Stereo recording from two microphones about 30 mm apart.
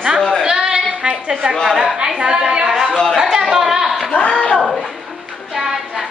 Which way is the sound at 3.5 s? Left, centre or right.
Centre.